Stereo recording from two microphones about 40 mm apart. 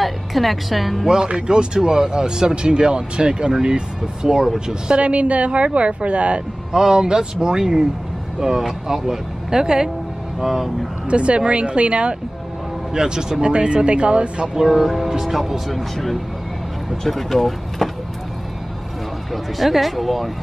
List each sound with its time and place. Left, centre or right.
0.0 s a woman's voice: centre
1.0 s speech: centre
4.8 s speech: right
6.7 s speech: centre
11.1 s speech: right
12.9 s speech: centre
14.6 s speech: centre
19.3 s speech: centre